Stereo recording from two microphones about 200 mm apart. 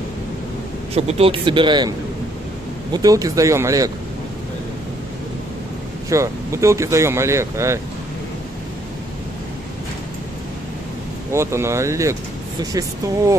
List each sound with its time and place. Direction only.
0.9 s a man's voice: 30° right (ahead or behind); by 3.9 s 15° right (ahead or behind)
6.0 s speech: 15° right (ahead or behind)
11.3 s speech: 15° right (ahead or behind)